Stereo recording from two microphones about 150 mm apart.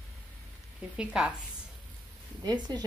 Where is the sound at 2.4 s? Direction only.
30° right (ahead or behind).